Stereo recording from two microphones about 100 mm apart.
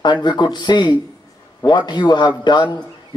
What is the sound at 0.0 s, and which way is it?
A man's voice, 50° left (ahead or behind).